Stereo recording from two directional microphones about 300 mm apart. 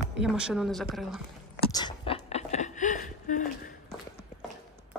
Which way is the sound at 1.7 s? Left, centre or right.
Centre.